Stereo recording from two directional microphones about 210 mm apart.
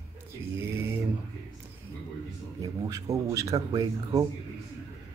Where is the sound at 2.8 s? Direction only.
15° right (ahead or behind).